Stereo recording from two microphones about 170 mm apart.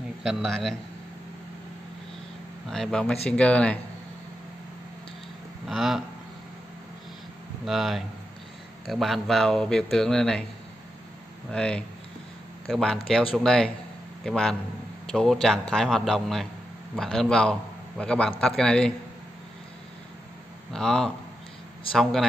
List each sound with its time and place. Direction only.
0.2 s a man's voice: centre (ahead or behind)
2.7 s a man's voice: 5° left (ahead or behind)
5.7 s a man's voice: centre (ahead or behind)
7.6 s a man's voice: centre (ahead or behind)
11.5 s a man's voice: 5° left (ahead or behind)
20.7 s a man's voice: 5° left (ahead or behind)